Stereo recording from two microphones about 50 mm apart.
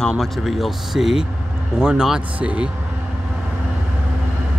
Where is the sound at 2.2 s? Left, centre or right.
Right.